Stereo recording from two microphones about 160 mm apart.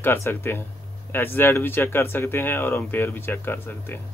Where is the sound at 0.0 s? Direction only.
15° left (ahead or behind).